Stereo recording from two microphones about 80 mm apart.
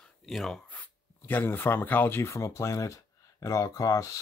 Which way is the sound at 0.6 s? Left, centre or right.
Left.